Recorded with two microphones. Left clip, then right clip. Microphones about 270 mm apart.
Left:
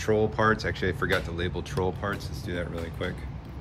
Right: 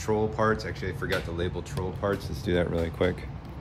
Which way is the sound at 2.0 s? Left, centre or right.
Centre.